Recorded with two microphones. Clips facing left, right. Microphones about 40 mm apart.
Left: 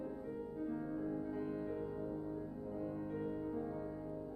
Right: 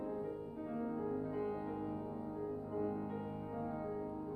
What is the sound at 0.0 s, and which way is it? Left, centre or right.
Music, centre.